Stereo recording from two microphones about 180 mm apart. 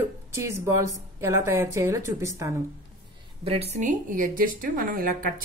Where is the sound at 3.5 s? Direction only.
35° right (ahead or behind).